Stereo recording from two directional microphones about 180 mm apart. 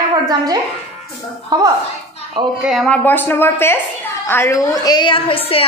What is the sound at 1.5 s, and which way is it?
Speech, 20° right (ahead or behind).